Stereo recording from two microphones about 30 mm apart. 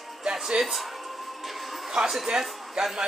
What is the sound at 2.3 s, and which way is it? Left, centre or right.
Speech, centre.